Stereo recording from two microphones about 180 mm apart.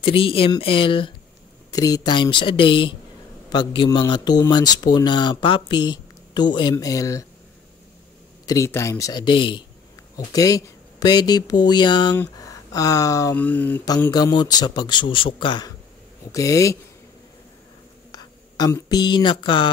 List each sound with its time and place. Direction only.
0.0 s speech: 30° left (ahead or behind)
8.5 s speech: 15° left (ahead or behind)
14.1 s speech: 25° left (ahead or behind)
18.1 s speech: 20° left (ahead or behind)